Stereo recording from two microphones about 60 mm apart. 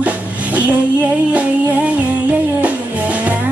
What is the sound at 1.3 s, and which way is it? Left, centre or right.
Music, right.